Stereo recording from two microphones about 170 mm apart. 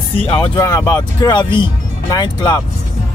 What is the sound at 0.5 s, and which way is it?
Speech, 20° left (ahead or behind).